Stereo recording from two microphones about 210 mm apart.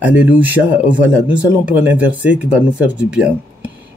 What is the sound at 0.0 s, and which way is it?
Speech, 10° right (ahead or behind).